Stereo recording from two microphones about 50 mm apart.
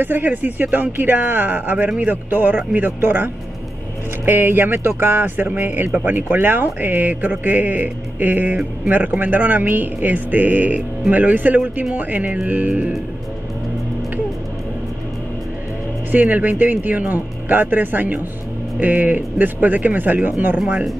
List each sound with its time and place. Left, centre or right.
0.0 s speech: right
4.3 s speech: right
16.1 s speech: right